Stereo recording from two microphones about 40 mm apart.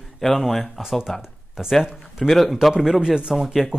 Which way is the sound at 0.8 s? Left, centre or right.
Centre.